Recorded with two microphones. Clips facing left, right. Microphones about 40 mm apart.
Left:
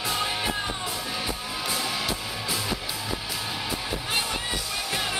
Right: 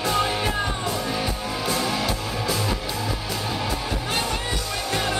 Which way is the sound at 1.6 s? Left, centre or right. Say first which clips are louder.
Right 4 dB; centre.